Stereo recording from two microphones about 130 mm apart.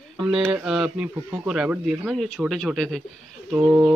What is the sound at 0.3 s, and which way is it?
A man's voice, 5° right (ahead or behind).